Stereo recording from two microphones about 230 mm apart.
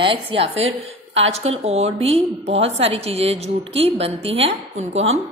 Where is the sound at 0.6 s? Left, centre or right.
Right.